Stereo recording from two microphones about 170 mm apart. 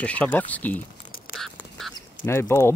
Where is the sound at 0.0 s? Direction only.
5° left (ahead or behind).